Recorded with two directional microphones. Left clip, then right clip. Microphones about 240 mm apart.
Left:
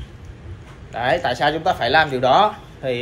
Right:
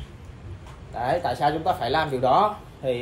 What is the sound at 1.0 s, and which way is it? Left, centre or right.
Speech, centre.